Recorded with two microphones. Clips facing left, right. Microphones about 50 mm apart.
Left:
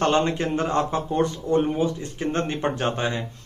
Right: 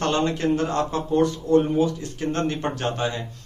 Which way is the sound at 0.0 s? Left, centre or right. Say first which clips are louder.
Left 1 dB; left.